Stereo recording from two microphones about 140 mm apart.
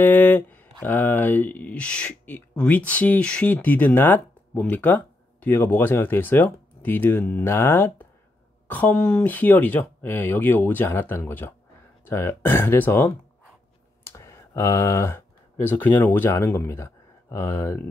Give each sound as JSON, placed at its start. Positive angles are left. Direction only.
{"t": 0.0, "sound": "speech", "side_deg": 15}